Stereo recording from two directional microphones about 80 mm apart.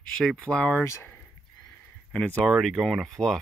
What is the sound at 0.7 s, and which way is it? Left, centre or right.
Speech, left.